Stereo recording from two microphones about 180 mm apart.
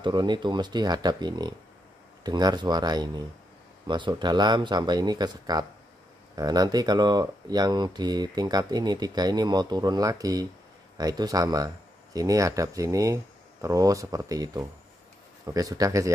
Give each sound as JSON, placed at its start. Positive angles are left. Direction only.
{"t": 0.0, "sound": "speech", "side_deg": -25}